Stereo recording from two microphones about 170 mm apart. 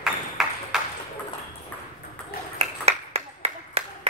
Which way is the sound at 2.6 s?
35° right (ahead or behind).